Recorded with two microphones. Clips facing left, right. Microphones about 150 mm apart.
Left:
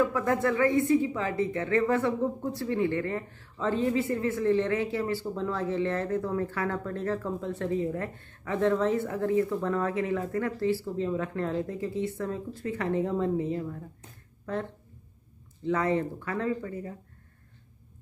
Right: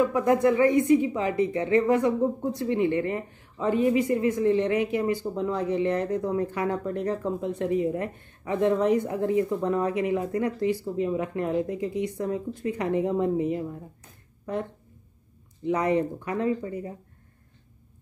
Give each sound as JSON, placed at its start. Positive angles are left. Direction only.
{"t": 0.0, "sound": "speech", "side_deg": -15}